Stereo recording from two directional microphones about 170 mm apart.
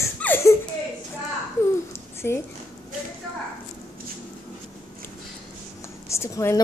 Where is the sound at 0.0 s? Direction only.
15° left (ahead or behind).